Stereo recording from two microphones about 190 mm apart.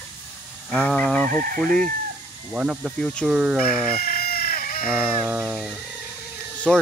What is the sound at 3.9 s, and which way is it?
Chicken, 50° left (ahead or behind).